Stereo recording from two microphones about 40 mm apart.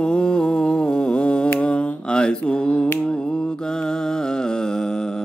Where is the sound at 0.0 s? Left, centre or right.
Left.